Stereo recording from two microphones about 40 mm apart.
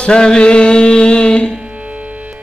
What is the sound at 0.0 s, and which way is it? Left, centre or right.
Music, left.